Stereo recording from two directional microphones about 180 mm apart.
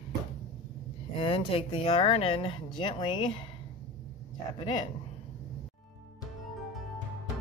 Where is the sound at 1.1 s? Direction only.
30° left (ahead or behind).